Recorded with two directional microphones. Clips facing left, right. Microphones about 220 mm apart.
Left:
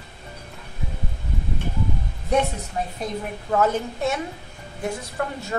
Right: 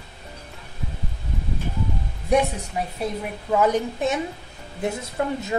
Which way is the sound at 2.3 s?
10° right (ahead or behind).